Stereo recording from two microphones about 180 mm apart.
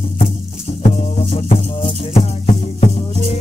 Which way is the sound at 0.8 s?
35° left (ahead or behind).